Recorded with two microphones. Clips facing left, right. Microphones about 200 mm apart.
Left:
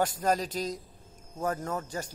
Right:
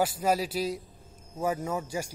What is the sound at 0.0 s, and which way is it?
A man's voice, 10° right (ahead or behind).